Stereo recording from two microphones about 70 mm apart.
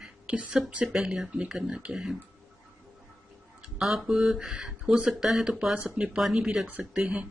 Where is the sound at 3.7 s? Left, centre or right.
Centre.